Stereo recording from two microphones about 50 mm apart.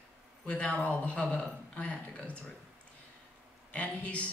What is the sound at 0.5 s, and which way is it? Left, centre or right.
Speech, left.